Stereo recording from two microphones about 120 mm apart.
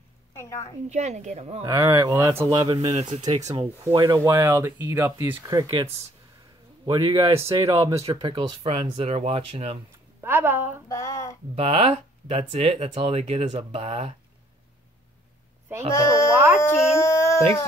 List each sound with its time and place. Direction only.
0.8 s a woman's voice: 70° right (ahead or behind)
1.6 s speech: 25° right (ahead or behind)
2.8 s speech: 65° right (ahead or behind)
3.5 s speech: 25° right (ahead or behind)
4.2 s speech: 25° right (ahead or behind)
6.9 s speech: 45° right (ahead or behind)
10.2 s a sound: 15° right (ahead or behind)
10.9 s a sound: 25° left (ahead or behind)
11.5 s speech: 55° right (ahead or behind)
15.9 s speech: 25° left (ahead or behind)
16.5 s baby cry: 25° left (ahead or behind)